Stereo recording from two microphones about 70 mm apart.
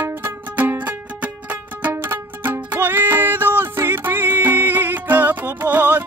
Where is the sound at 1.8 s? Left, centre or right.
Right.